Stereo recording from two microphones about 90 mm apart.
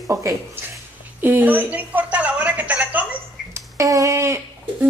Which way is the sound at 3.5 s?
35° right (ahead or behind).